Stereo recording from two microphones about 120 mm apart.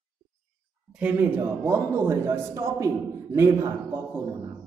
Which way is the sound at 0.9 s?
10° right (ahead or behind).